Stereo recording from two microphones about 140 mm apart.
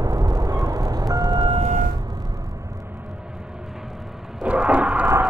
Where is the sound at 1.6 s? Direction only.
60° right (ahead or behind).